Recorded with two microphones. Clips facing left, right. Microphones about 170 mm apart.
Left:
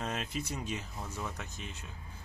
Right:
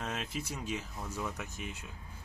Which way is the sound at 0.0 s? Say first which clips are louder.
Left 1 dB; centre (ahead or behind).